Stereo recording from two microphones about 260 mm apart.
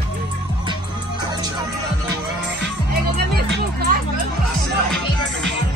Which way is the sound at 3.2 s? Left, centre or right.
Right.